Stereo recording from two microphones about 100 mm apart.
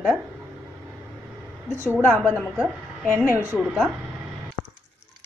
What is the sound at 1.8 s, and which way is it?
A woman's voice, 25° right (ahead or behind).